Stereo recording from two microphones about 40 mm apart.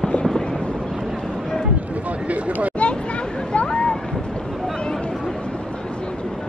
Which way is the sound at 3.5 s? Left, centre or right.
Left.